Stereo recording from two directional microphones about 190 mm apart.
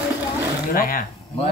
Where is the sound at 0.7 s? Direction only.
50° left (ahead or behind).